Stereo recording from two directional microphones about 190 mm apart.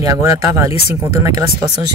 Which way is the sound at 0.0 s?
15° right (ahead or behind).